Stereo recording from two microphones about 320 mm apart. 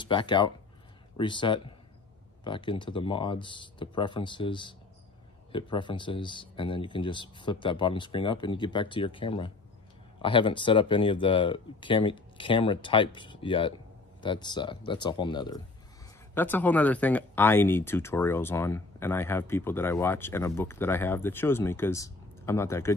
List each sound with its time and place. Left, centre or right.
0.0 s speech: centre